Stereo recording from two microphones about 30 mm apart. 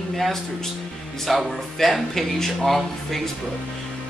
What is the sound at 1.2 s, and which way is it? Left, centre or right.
Speech, centre.